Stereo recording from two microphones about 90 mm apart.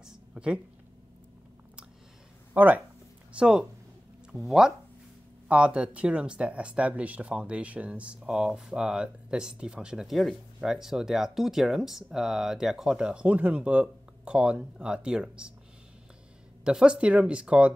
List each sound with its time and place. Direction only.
0.0 s a sound: 10° right (ahead or behind)
2.5 s speech: 20° right (ahead or behind)
16.6 s speech: 10° right (ahead or behind)